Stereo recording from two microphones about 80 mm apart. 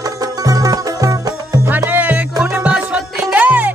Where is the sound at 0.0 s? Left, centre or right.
Right.